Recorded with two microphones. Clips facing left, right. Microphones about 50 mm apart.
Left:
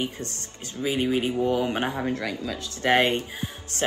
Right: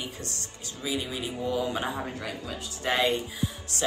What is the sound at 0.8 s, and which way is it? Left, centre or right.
Speech, left.